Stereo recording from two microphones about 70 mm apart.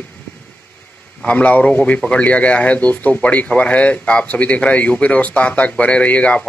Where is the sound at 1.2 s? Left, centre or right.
Centre.